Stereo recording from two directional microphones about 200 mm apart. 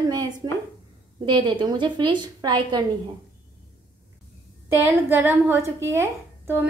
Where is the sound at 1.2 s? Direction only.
25° right (ahead or behind).